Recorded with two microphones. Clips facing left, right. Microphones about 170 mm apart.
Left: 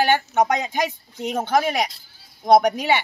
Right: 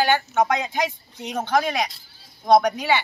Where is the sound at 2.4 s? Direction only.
20° left (ahead or behind).